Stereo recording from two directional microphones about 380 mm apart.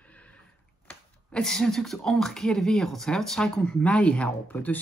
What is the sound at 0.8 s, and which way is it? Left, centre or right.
Speech, centre.